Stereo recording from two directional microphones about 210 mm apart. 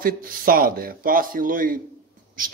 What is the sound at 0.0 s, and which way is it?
Speech, 45° right (ahead or behind).